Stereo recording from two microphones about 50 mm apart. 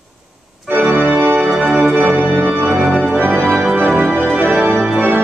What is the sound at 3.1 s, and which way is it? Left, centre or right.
Music, right.